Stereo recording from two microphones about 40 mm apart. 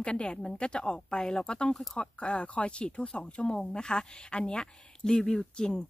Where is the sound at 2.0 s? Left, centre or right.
Left.